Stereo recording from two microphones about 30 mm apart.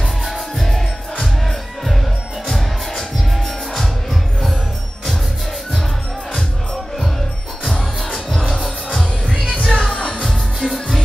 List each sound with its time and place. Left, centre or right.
0.2 s music: centre
3.3 s music: centre
8.0 s music: centre
9.7 s music: centre
9.9 s music: left
10.2 s music: centre